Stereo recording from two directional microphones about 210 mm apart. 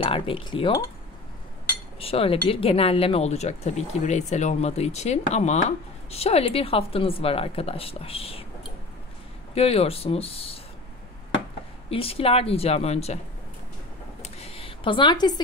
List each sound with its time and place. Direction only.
0.0 s speech: 25° left (ahead or behind)
2.0 s speech: 25° left (ahead or behind)
9.6 s speech: 30° left (ahead or behind)
11.9 s speech: 25° left (ahead or behind)
14.2 s a sound: 30° left (ahead or behind)